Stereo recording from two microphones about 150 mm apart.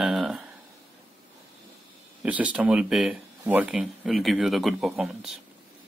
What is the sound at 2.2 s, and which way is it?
Speech, 10° right (ahead or behind).